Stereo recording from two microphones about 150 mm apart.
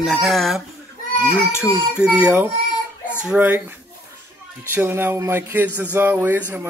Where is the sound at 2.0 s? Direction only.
5° right (ahead or behind).